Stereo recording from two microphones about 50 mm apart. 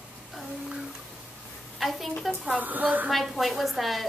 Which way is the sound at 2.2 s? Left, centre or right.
Centre.